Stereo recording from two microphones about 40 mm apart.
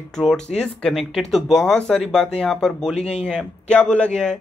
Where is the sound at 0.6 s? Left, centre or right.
Left.